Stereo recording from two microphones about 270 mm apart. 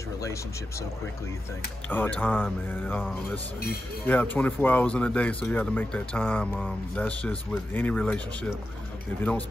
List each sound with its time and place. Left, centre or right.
0.2 s speech: centre
1.9 s speech: centre